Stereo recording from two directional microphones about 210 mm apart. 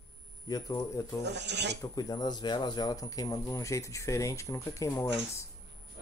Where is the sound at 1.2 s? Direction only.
55° right (ahead or behind).